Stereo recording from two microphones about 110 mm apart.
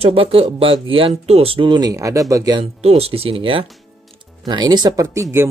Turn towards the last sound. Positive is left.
turn(degrees=-25)  # may be behind; listen again after turning